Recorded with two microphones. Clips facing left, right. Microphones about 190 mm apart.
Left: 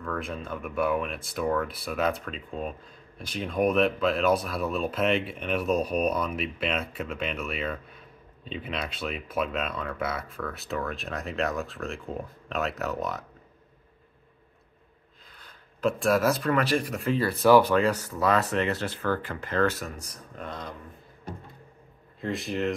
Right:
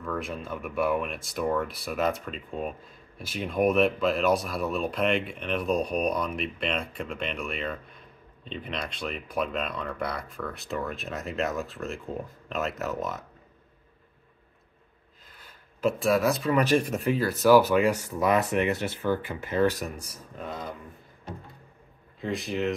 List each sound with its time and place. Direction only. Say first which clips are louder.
0.0 s speech: even; centre (ahead or behind)
15.3 s a sound: even; 5° right (ahead or behind)
16.5 s speech: right 3 dB; 15° right (ahead or behind)
17.2 s speech: even; centre (ahead or behind)
22.2 s speech: even; centre (ahead or behind)